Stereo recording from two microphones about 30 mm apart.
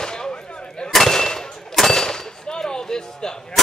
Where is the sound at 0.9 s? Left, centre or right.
Centre.